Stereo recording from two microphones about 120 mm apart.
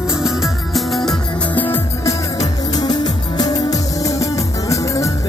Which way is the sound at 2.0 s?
30° left (ahead or behind).